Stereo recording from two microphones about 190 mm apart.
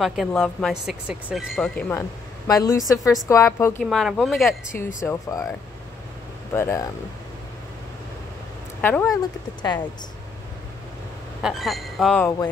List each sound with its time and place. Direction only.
0.0 s speech: centre (ahead or behind)
3.8 s speech: centre (ahead or behind)
4.7 s speech: 15° left (ahead or behind)
6.5 s speech: 15° left (ahead or behind)
8.8 s speech: 15° left (ahead or behind)
11.4 s speech: centre (ahead or behind)